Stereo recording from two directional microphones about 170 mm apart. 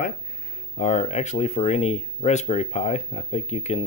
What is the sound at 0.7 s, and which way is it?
Speech, 40° left (ahead or behind).